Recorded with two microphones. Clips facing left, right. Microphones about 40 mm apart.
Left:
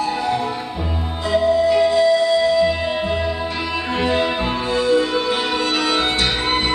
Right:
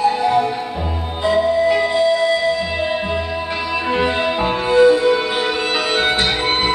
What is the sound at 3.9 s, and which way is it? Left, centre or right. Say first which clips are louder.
Music: left 1 dB; centre.